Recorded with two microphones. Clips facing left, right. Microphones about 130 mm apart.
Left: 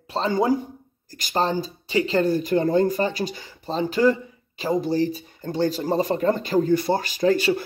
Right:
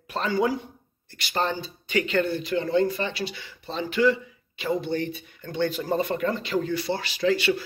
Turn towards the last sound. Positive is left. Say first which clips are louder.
# left 3 dB
turn(degrees=40)  # may be behind; listen again after turning